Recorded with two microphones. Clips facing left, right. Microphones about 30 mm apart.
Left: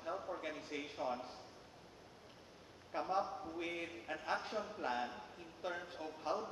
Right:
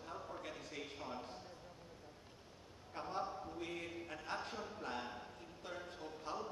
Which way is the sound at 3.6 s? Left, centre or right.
Left.